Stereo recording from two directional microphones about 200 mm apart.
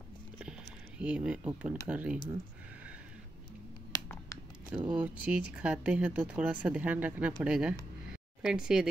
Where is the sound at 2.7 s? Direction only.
5° right (ahead or behind).